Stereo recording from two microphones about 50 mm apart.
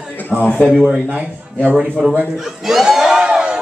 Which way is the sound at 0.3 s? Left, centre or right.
Centre.